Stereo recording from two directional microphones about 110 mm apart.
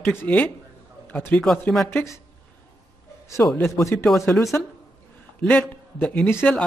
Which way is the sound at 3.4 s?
25° left (ahead or behind).